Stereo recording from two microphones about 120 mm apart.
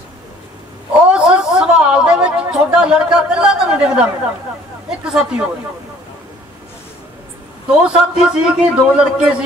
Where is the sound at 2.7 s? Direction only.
5° right (ahead or behind).